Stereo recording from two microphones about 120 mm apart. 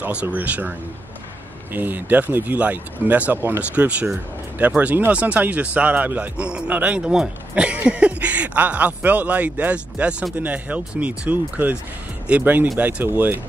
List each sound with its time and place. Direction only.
0.0 s speech: 10° right (ahead or behind)